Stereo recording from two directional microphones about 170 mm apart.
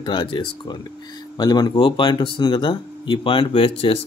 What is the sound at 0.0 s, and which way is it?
Speech, 30° left (ahead or behind).